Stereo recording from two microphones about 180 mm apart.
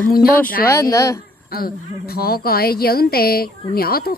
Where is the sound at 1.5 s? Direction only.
60° left (ahead or behind).